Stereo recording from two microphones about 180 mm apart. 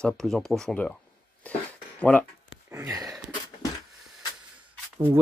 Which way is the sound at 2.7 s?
15° right (ahead or behind).